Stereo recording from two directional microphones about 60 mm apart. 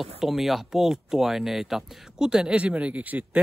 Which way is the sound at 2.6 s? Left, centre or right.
Right.